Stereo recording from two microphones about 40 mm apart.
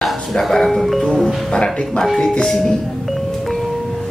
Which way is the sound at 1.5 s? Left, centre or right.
Left.